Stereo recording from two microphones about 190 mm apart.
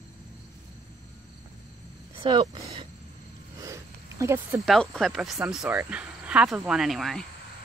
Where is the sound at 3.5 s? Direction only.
15° right (ahead or behind).